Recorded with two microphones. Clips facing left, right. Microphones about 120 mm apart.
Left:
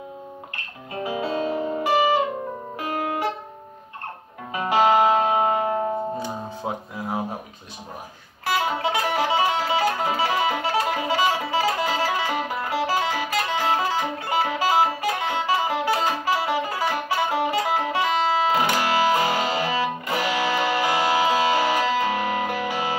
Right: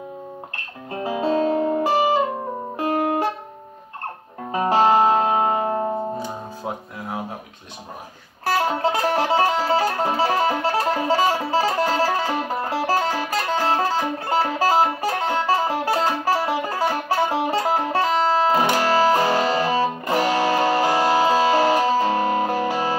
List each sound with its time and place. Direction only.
1.0 s music: 40° right (ahead or behind)
4.5 s music: 40° right (ahead or behind)
8.5 s music: 40° right (ahead or behind)